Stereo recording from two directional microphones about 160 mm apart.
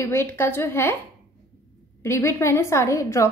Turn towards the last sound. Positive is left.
turn(degrees=20)  # may be behind; listen again after turning